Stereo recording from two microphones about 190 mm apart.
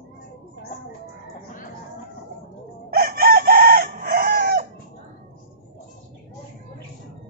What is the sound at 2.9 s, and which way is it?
Chicken, 55° right (ahead or behind).